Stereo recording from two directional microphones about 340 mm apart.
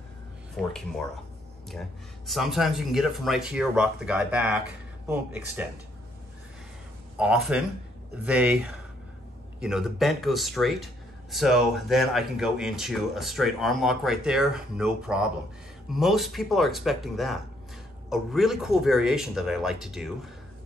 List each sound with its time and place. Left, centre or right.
0.6 s speech: centre
2.2 s speech: centre
7.2 s speech: centre
9.6 s speech: centre